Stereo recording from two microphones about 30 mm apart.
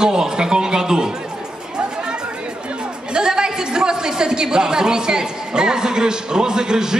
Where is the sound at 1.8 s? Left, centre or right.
Right.